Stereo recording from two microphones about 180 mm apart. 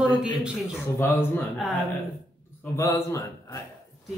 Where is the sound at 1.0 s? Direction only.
10° left (ahead or behind).